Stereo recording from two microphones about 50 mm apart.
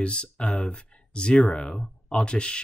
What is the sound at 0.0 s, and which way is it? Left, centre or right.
Speech, centre.